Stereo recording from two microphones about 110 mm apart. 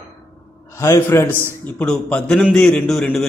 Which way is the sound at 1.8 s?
10° left (ahead or behind).